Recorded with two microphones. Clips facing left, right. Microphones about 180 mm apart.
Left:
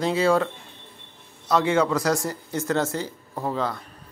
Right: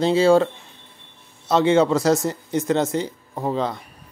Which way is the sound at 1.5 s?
25° right (ahead or behind).